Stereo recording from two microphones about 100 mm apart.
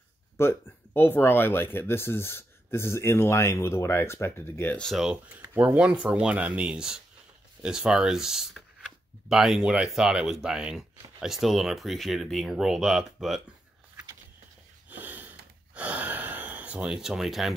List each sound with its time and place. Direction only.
0.4 s speech: 25° left (ahead or behind)
4.7 s speech: centre (ahead or behind)
5.1 s speech: 15° right (ahead or behind)
14.9 s snort: 15° right (ahead or behind)
15.7 s gasp: 15° right (ahead or behind)